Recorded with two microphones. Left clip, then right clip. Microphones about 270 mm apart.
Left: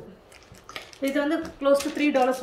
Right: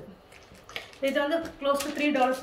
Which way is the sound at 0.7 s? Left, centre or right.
Centre.